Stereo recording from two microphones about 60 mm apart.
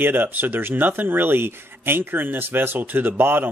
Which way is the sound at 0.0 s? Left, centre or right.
Right.